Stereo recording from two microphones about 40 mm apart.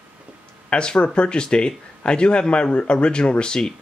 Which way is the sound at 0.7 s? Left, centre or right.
Left.